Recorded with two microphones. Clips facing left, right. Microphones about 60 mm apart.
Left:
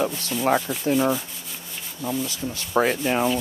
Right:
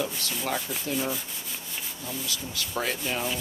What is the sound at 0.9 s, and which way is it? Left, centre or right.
Sanding, left.